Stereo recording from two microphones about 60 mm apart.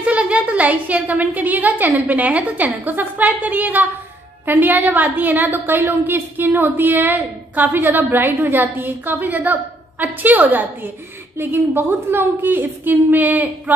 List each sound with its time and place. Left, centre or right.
0.0 s a woman's voice: right